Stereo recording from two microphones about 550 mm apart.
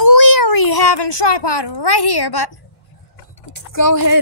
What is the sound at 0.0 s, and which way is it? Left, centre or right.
Speech, left.